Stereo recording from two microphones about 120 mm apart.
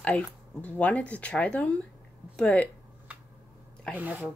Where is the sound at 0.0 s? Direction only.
10° left (ahead or behind).